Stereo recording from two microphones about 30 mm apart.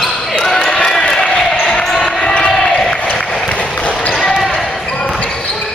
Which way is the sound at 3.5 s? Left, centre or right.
Left.